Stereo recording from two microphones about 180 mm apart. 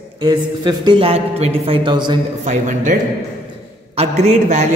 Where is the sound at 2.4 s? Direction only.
45° right (ahead or behind).